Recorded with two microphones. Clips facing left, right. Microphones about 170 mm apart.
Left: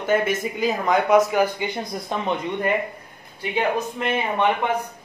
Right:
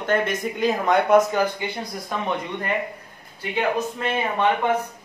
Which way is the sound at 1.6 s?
15° left (ahead or behind).